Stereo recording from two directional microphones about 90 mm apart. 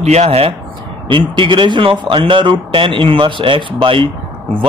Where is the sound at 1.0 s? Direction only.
65° right (ahead or behind).